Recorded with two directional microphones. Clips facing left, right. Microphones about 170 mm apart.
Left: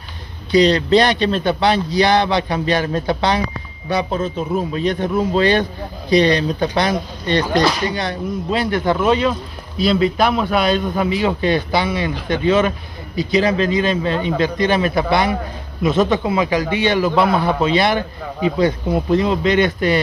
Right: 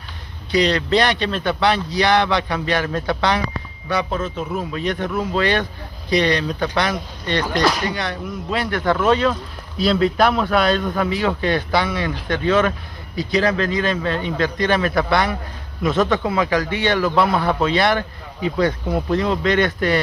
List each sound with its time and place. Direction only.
0.5 s a man's voice: 35° left (ahead or behind); by 20.0 s 20° left (ahead or behind)